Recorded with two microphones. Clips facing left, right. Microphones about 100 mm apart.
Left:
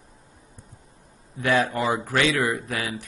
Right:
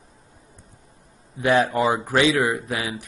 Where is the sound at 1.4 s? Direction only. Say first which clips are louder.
Right 3 dB; 15° right (ahead or behind).